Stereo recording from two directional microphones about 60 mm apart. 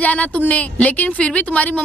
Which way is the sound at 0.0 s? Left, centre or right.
Left.